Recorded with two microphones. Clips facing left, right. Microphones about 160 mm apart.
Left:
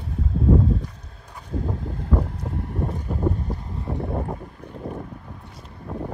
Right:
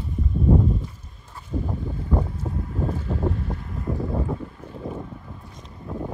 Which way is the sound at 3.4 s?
30° left (ahead or behind).